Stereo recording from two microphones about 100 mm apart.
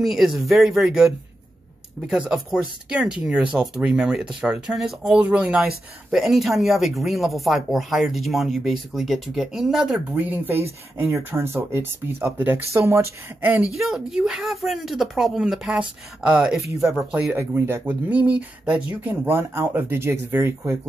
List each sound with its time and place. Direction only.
0.0 s speech: 5° right (ahead or behind)
10.1 s speech: 20° right (ahead or behind)
13.7 s speech: 5° right (ahead or behind)
16.5 s speech: 30° right (ahead or behind)
16.9 s speech: 10° right (ahead or behind)
17.4 s speech: 25° right (ahead or behind)